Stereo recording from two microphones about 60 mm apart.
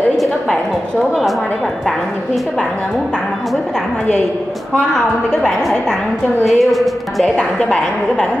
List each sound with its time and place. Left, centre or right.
5.4 s a woman's voice: centre
7.5 s a woman's voice: centre